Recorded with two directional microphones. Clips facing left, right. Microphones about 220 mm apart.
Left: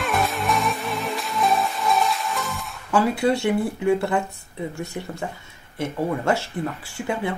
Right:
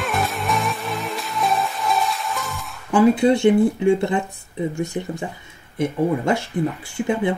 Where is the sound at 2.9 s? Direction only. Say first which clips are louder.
Right 5 dB; 20° right (ahead or behind).